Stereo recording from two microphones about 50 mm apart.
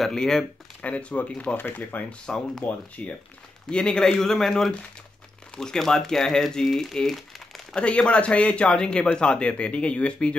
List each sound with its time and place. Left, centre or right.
0.1 s speech: centre
0.8 s a man's voice: left
1.6 s speech: left
2.2 s speech: centre
3.0 s a man's voice: left; by 7.6 s centre
7.7 s a man's voice: centre